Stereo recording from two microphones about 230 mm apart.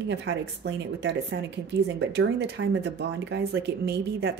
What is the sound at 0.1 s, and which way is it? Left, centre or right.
A woman's voice, right.